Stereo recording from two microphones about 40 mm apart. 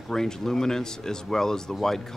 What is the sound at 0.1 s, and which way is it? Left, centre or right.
Speech, centre.